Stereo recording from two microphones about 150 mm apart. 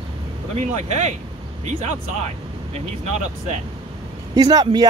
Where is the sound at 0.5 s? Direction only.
50° right (ahead or behind).